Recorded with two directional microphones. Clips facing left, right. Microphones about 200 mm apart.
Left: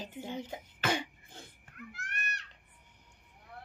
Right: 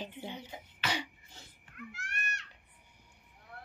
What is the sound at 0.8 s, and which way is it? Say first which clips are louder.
Cough: left 4 dB; 50° left (ahead or behind).